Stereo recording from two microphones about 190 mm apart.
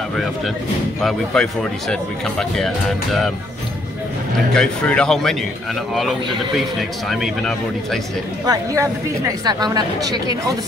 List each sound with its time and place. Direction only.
1.0 s speech: 5° left (ahead or behind)
4.6 s speech: 5° left (ahead or behind)
8.5 s speech: 15° right (ahead or behind)